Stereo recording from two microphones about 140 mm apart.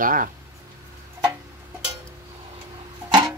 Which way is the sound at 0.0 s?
75° right (ahead or behind).